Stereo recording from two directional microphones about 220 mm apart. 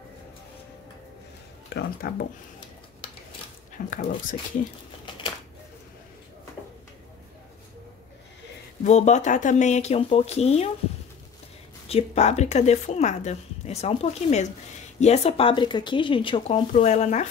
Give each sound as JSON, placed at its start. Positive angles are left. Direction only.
{"t": 1.7, "sound": "speech", "side_deg": 45}
{"t": 3.0, "sound": "a sound", "side_deg": 25}
{"t": 3.7, "sound": "speech", "side_deg": 35}
{"t": 8.8, "sound": "speech", "side_deg": 30}
{"t": 11.9, "sound": "speech", "side_deg": 30}